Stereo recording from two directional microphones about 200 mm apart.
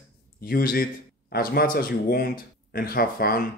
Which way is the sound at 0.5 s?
50° left (ahead or behind).